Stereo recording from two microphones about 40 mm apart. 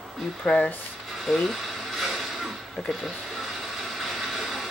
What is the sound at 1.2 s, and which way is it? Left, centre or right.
Music, centre.